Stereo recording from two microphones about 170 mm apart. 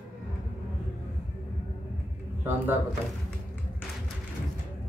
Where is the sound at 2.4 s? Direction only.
10° right (ahead or behind).